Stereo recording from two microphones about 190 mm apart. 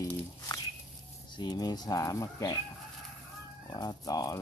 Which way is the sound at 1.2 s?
25° left (ahead or behind).